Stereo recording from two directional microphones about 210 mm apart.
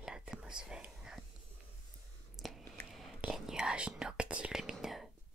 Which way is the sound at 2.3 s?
Centre (ahead or behind).